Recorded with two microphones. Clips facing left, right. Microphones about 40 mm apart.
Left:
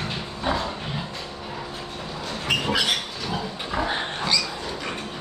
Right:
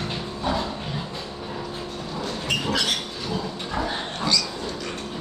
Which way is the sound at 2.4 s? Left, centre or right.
Centre.